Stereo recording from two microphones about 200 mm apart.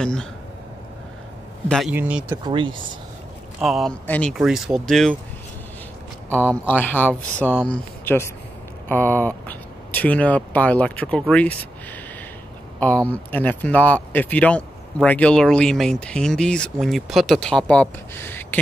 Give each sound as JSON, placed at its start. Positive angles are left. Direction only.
{"t": 0.0, "sound": "speech", "side_deg": 5}
{"t": 1.7, "sound": "speech", "side_deg": 0}
{"t": 2.4, "sound": "speech", "side_deg": -25}
{"t": 3.6, "sound": "speech", "side_deg": 0}
{"t": 6.6, "sound": "speech", "side_deg": 10}
{"t": 12.8, "sound": "speech", "side_deg": 5}